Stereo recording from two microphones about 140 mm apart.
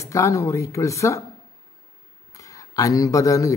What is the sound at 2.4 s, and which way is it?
Speech, 25° left (ahead or behind).